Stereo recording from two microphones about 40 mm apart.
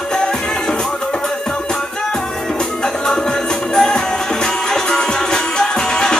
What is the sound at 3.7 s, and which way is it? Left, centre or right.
Music, centre.